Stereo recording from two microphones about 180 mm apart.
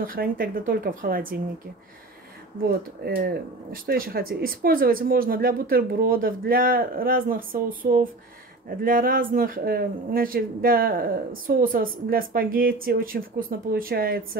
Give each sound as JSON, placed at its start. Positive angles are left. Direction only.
{"t": 0.0, "sound": "speech", "side_deg": -50}
{"t": 3.0, "sound": "speech", "side_deg": -55}